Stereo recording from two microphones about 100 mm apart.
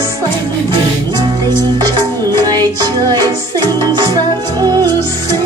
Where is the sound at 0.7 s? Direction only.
50° right (ahead or behind).